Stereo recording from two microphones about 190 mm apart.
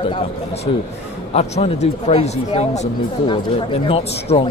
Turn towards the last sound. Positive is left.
turn(degrees=30)  # may be behind; listen again after turning